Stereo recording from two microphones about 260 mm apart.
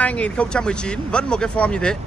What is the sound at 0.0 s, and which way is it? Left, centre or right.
A man's voice, centre.